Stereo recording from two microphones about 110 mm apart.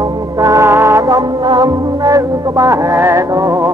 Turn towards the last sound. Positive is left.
turn(degrees=-30)  # may be behind; listen again after turning